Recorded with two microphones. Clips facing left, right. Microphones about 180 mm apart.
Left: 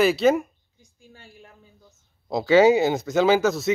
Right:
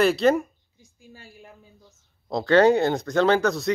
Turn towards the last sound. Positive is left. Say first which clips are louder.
# left 1 dB
turn(degrees=5)  # may be behind; listen again after turning